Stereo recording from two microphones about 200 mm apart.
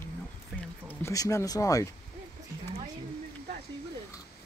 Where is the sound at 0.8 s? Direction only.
15° left (ahead or behind).